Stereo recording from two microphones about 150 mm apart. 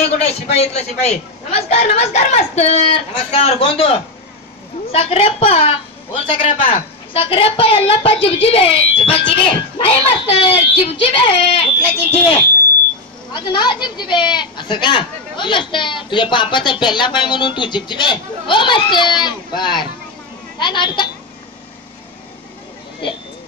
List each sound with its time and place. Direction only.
0.0 s a man's voice: 45° left (ahead or behind)
13.3 s speech: 30° left (ahead or behind)